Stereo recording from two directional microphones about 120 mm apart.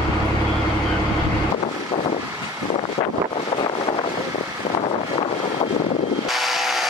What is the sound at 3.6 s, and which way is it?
Vehicle, 40° left (ahead or behind).